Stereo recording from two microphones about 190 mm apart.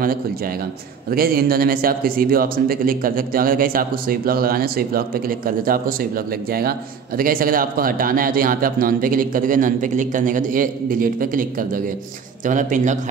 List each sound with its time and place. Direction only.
1.1 s a man's voice: 50° right (ahead or behind)
7.2 s a man's voice: 50° right (ahead or behind)